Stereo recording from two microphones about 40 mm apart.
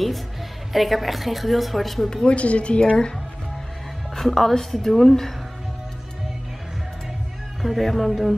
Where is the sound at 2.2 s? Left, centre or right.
Left.